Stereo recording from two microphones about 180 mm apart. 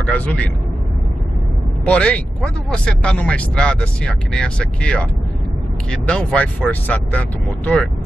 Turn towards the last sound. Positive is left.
turn(degrees=10)  # may be behind; listen again after turning